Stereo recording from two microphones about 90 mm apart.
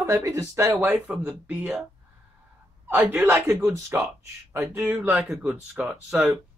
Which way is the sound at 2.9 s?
25° right (ahead or behind).